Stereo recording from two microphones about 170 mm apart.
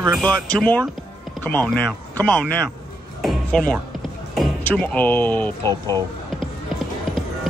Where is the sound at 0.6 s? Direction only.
10° left (ahead or behind).